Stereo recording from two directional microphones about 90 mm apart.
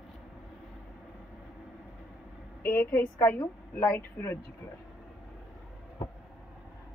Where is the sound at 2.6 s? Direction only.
25° left (ahead or behind).